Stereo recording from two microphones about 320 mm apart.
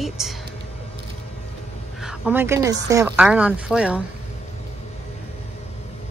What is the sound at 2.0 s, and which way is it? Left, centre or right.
A woman's voice, centre.